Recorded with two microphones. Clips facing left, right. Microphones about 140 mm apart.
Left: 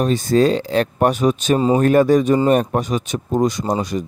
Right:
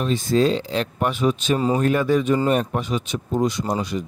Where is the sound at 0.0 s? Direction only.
45° left (ahead or behind).